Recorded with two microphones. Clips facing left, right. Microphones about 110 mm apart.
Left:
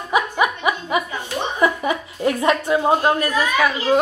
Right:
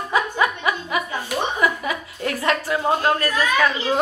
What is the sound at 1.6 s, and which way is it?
A woman's voice, 25° left (ahead or behind).